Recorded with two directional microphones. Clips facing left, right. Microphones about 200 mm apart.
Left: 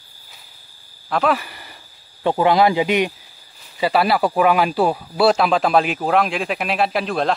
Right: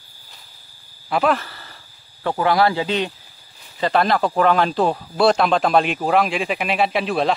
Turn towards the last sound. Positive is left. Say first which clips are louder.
# even
turn(degrees=0)  # may be behind; listen again after turning